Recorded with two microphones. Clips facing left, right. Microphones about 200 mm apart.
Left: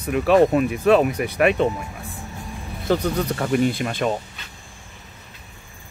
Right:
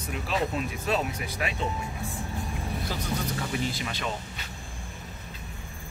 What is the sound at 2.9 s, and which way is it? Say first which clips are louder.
Speech: left 14 dB; 65° left (ahead or behind).